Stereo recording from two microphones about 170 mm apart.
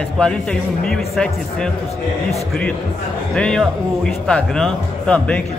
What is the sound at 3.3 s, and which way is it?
A man's voice, 5° left (ahead or behind).